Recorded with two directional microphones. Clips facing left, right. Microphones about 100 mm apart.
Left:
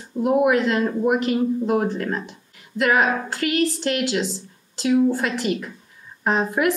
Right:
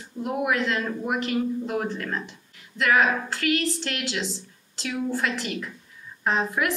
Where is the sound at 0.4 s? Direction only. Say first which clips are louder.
Left 5 dB; 35° left (ahead or behind).